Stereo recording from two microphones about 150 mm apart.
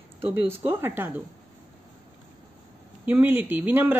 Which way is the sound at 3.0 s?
15° right (ahead or behind).